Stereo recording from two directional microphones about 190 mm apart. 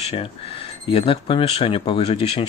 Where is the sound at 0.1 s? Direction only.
30° left (ahead or behind).